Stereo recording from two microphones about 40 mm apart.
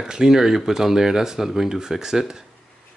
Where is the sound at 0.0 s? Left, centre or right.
Centre.